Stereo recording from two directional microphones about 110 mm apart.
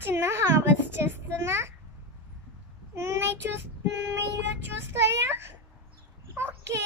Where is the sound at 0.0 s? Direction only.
20° right (ahead or behind).